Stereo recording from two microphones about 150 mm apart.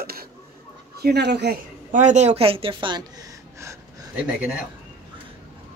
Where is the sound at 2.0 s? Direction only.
50° right (ahead or behind); by 4.0 s 20° right (ahead or behind).